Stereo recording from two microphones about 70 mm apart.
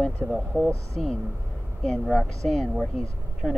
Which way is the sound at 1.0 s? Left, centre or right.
Centre.